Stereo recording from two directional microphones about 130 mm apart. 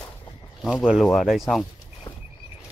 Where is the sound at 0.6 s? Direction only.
Centre (ahead or behind).